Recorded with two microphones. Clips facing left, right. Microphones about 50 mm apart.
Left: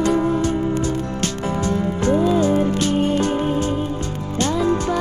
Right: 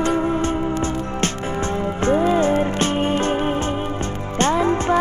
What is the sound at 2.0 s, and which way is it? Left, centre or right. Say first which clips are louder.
Music: even; right.